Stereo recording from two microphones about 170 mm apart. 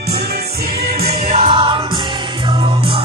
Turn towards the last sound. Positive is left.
turn(degrees=-30)  # may be behind; listen again after turning